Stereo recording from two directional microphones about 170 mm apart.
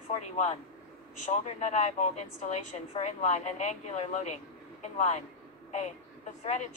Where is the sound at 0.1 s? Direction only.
40° left (ahead or behind).